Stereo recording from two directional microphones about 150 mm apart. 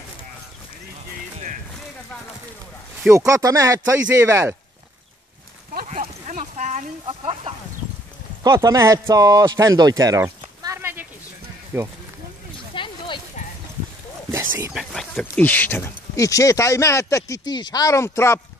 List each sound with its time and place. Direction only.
3.1 s speech: 20° right (ahead or behind)
5.9 s a sound: 55° right (ahead or behind)
7.1 s speech: 35° right (ahead or behind)
8.5 s speech: 20° right (ahead or behind)
12.7 s a sound: 35° left (ahead or behind)
14.7 s speech: centre (ahead or behind); by 18.4 s 15° left (ahead or behind)